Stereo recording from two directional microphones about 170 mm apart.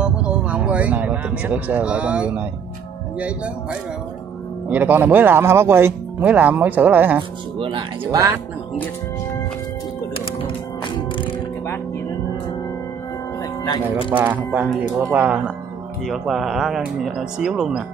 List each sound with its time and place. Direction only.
0.0 s speech: 5° right (ahead or behind)
4.6 s speech: 10° right (ahead or behind)
7.2 s speech: 30° right (ahead or behind)
8.0 s speech: 20° right (ahead or behind)
14.1 s speech: 10° right (ahead or behind)